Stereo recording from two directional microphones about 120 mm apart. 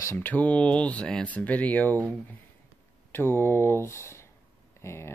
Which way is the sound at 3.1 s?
20° left (ahead or behind).